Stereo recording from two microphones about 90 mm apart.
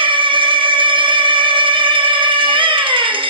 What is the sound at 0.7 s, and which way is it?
Music, 70° right (ahead or behind).